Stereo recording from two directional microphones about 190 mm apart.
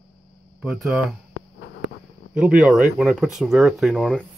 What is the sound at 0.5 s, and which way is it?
Speech, 5° right (ahead or behind).